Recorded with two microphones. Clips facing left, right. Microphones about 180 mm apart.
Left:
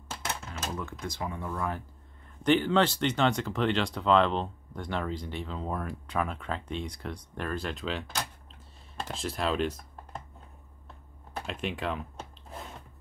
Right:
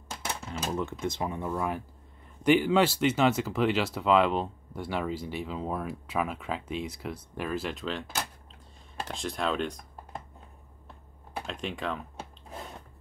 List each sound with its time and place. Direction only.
1.0 s speech: 25° right (ahead or behind); by 9.8 s 5° left (ahead or behind)
11.4 s speech: 5° left (ahead or behind)